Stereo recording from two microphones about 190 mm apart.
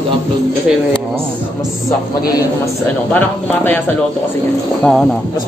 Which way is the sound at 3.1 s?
10° left (ahead or behind).